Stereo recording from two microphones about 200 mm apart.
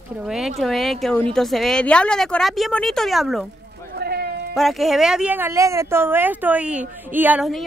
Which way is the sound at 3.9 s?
50° right (ahead or behind).